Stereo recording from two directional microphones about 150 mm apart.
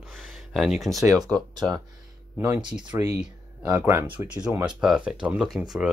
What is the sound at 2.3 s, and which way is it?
Speech, 10° right (ahead or behind).